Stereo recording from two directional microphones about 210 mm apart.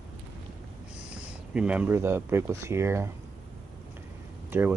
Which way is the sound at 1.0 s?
5° right (ahead or behind).